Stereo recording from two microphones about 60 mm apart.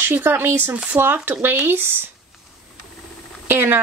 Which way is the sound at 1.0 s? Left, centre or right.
Right.